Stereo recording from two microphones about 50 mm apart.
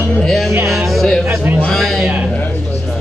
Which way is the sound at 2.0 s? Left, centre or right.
Right.